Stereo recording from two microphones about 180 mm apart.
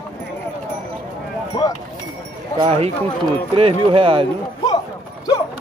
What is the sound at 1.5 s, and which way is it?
Speech, 20° left (ahead or behind).